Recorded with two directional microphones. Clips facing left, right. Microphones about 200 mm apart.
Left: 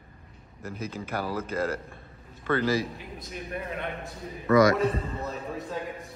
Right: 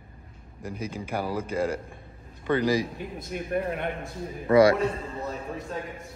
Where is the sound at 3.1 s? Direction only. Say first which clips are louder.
Right 8 dB; 50° right (ahead or behind).